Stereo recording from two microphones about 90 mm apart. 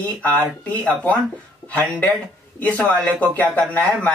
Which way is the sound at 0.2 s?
15° left (ahead or behind).